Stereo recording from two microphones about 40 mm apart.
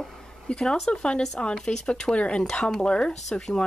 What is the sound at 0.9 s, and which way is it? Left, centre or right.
Speech, left.